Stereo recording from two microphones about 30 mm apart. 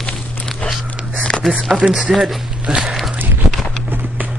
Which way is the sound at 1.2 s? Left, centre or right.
Left.